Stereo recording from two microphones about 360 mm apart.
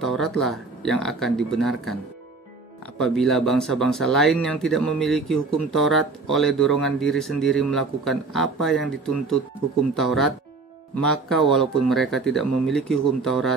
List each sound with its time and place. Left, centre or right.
0.0 s speech: centre
3.0 s speech: centre